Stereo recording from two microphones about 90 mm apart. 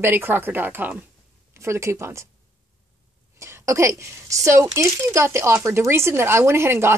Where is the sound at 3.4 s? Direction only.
30° right (ahead or behind).